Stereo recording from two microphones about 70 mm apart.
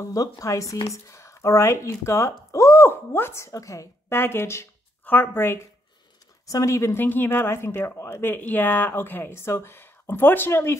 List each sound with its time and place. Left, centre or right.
0.0 s speech: left
4.1 s speech: left
5.0 s speech: left
6.4 s speech: left